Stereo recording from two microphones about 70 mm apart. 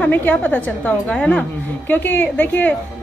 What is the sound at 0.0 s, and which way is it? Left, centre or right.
A woman's voice, left.